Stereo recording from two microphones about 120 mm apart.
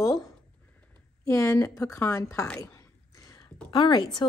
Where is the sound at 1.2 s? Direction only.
25° left (ahead or behind).